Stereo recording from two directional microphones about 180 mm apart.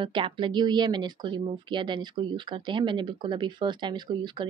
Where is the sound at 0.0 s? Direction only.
25° right (ahead or behind).